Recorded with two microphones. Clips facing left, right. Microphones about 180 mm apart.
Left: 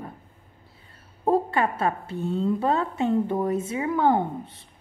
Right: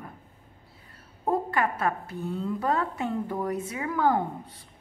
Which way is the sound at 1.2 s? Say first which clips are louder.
Left 4 dB; 25° left (ahead or behind).